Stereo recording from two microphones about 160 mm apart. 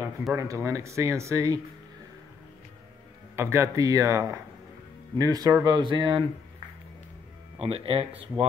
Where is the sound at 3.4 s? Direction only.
15° right (ahead or behind).